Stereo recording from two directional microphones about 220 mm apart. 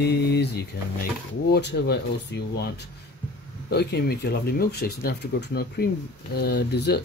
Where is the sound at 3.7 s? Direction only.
45° left (ahead or behind).